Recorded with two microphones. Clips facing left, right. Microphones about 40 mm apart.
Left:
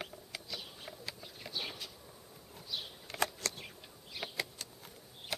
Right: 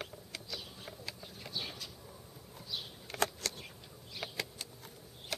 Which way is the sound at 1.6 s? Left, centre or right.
Centre.